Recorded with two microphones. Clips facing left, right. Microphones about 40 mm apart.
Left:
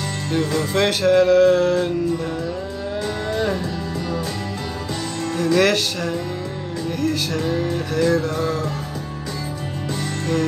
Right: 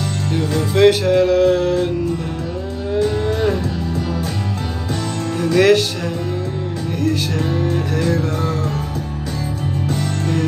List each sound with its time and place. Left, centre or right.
0.3 s music: centre
5.3 s music: centre
7.0 s music: right